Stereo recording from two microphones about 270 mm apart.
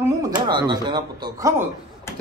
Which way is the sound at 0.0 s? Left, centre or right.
Centre.